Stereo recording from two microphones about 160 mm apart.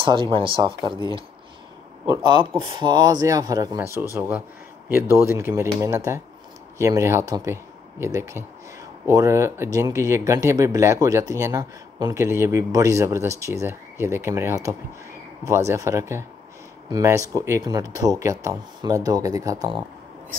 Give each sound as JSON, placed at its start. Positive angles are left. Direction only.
{"t": 0.0, "sound": "speech", "side_deg": -30}